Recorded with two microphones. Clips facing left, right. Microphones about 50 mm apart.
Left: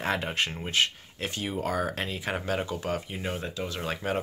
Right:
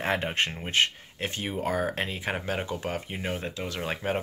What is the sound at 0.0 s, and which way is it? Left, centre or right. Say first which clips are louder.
Speech: right 1 dB; right.